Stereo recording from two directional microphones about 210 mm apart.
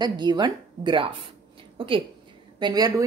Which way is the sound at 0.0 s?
20° right (ahead or behind).